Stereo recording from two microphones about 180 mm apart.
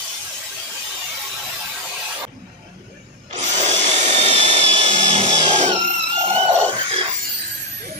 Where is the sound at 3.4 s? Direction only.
40° right (ahead or behind).